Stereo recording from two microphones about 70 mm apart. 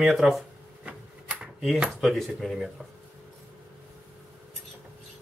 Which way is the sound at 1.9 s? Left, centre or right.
Centre.